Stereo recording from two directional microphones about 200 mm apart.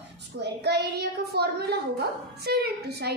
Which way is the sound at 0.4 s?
60° right (ahead or behind).